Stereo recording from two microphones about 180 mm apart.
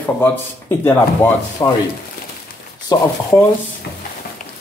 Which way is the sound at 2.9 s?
20° left (ahead or behind).